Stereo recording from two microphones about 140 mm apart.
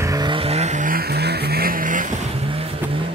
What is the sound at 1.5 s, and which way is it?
Vehicle, 90° right.